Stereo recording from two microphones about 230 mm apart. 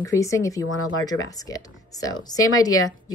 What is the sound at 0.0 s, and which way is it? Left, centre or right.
Speech, centre.